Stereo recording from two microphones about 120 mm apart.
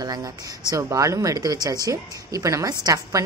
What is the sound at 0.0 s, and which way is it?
Speech, 35° right (ahead or behind).